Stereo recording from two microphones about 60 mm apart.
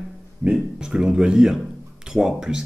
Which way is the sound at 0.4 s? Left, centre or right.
Centre.